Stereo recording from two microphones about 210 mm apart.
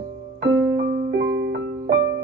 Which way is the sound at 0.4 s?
55° right (ahead or behind).